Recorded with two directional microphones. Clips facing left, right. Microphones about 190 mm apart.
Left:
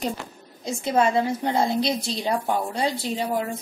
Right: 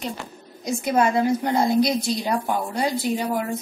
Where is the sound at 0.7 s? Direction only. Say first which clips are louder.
Right 1 dB; 25° left (ahead or behind).